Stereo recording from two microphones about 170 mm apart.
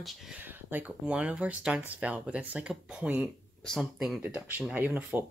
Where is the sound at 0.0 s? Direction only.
10° right (ahead or behind).